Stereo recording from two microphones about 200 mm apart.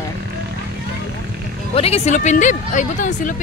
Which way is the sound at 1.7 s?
30° left (ahead or behind).